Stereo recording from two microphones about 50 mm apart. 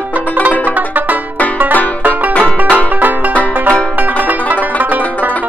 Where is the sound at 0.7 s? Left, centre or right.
Right.